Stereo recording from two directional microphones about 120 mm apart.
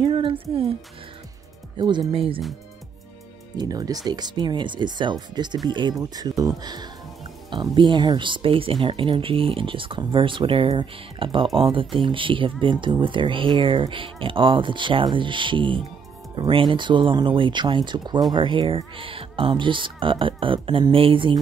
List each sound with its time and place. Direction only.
0.0 s speech: 45° right (ahead or behind)
1.8 s speech: 40° right (ahead or behind)
3.5 s speech: 30° right (ahead or behind)